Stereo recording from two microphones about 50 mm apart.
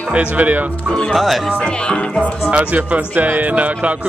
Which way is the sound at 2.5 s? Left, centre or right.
Right.